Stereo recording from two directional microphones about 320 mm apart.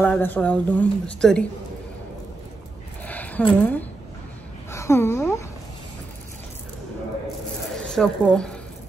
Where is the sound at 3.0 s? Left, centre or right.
Centre.